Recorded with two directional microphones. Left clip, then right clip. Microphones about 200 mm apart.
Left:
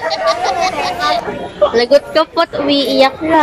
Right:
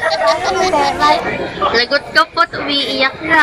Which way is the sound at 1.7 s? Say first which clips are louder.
Left 2 dB; 20° left (ahead or behind).